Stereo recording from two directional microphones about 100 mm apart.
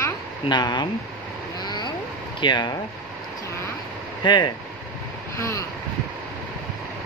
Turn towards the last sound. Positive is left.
turn(degrees=30)  # may be behind; listen again after turning